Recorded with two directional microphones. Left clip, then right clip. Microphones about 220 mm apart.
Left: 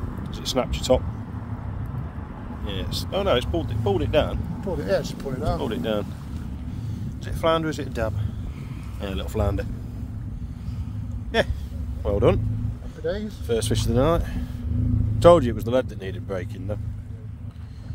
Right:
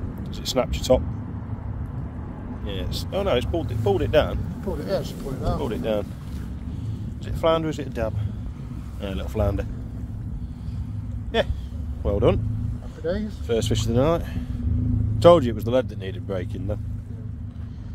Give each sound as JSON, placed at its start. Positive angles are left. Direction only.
{"t": 0.3, "sound": "speech", "side_deg": -10}
{"t": 2.6, "sound": "speech", "side_deg": 0}
{"t": 4.8, "sound": "speech", "side_deg": 30}
{"t": 5.6, "sound": "speech", "side_deg": -5}
{"t": 7.3, "sound": "speech", "side_deg": 0}
{"t": 11.3, "sound": "speech", "side_deg": 0}
{"t": 13.5, "sound": "speech", "side_deg": 0}